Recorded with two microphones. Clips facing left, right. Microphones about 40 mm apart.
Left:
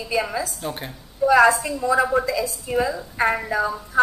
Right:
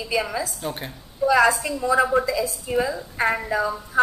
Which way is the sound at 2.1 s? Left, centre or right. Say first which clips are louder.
Even; right.